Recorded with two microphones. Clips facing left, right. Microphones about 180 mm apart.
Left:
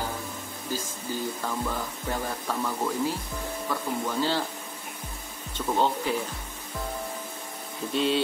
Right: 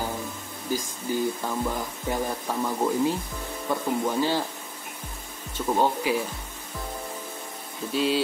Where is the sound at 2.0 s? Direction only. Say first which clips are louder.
Right 3 dB; 15° right (ahead or behind).